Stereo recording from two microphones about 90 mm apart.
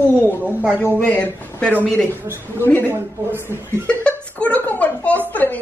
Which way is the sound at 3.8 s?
15° left (ahead or behind).